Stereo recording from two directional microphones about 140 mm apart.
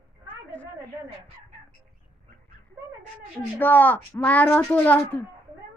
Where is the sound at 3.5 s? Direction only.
15° left (ahead or behind).